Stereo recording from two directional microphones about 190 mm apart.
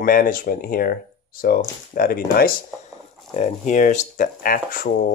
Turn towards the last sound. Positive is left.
turn(degrees=45)  # may be behind; listen again after turning